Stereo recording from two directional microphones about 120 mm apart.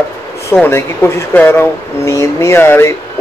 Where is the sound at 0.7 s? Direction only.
20° left (ahead or behind).